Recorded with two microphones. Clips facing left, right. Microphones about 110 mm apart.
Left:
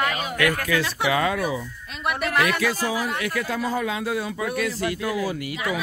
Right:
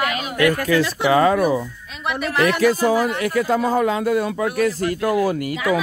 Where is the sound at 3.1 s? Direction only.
35° right (ahead or behind).